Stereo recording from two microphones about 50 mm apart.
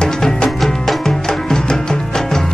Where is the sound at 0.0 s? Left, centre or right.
Centre.